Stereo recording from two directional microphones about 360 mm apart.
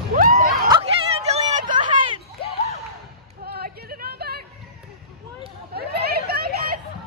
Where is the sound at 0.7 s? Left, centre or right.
Centre.